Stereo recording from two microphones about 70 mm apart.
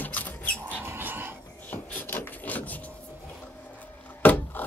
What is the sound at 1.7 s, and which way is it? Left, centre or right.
Wood, left.